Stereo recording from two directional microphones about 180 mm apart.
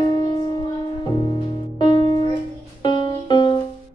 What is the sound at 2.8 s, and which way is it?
Music, 25° left (ahead or behind).